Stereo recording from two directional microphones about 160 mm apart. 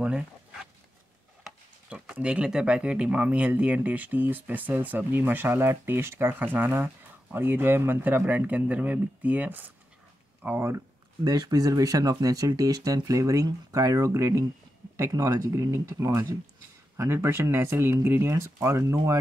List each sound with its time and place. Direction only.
0.0 s zipper: 5° right (ahead or behind)
1.4 s speech: 5° right (ahead or behind)